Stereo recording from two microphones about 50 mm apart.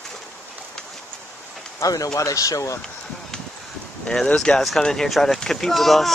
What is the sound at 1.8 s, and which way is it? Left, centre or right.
Speech, left.